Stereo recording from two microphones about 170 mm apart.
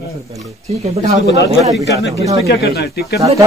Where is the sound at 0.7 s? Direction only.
40° right (ahead or behind).